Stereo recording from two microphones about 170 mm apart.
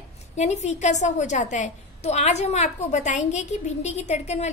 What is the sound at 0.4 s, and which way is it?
A woman's voice, 40° left (ahead or behind).